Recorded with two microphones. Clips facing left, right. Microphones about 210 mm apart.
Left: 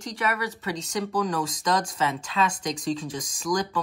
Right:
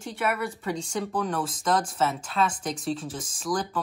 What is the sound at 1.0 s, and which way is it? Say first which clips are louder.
Speech: left 4 dB; 5° right (ahead or behind).